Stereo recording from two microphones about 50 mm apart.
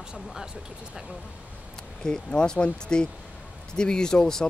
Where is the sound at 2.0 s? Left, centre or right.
Centre.